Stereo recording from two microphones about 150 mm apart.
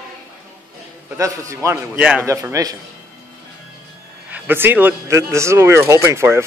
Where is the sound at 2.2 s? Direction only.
20° right (ahead or behind).